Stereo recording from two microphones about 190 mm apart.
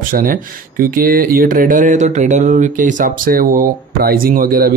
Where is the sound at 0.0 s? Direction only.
50° right (ahead or behind).